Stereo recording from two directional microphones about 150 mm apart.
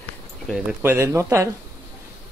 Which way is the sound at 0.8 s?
15° right (ahead or behind).